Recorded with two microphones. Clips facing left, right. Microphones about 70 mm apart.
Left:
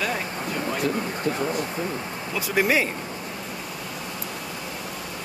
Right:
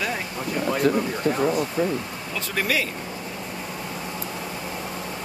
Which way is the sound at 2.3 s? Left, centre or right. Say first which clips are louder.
Left 4 dB; centre.